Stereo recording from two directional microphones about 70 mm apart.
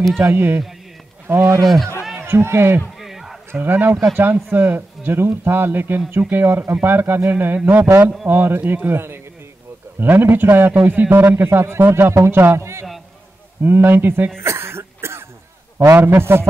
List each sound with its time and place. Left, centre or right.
0.2 s a man's voice: right
1.6 s speech: centre
2.2 s a man's voice: right
3.0 s music: centre
3.5 s a man's voice: right
13.7 s a man's voice: right
14.4 s cough: right
16.1 s a man's voice: right